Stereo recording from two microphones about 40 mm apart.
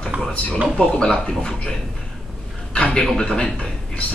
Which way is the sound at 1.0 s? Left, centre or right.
Left.